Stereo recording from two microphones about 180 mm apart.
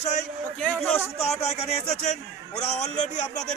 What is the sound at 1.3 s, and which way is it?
A man's voice, 35° left (ahead or behind).